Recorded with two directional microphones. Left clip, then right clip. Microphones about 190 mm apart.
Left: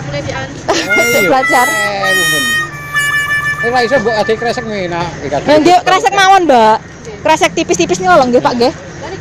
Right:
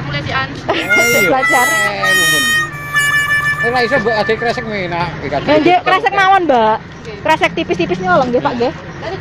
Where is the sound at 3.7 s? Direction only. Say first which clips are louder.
Left 5 dB; 40° left (ahead or behind).